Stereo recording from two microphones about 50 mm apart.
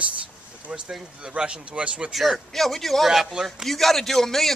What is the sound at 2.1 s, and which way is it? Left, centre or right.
Speech, centre.